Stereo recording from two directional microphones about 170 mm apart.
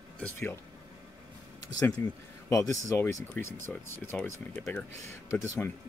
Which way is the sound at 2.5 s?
20° left (ahead or behind).